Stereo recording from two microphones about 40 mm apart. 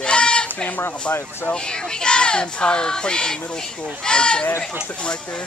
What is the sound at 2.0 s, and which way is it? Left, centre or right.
Speech, left.